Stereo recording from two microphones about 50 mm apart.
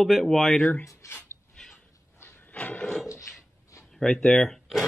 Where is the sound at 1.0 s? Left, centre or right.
Left.